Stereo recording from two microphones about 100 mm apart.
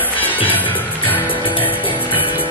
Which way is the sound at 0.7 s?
20° left (ahead or behind).